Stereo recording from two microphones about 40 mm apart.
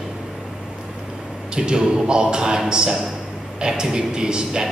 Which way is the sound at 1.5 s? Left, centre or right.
Right.